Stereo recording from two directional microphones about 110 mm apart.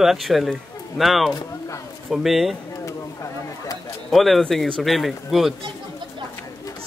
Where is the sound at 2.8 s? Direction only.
30° left (ahead or behind).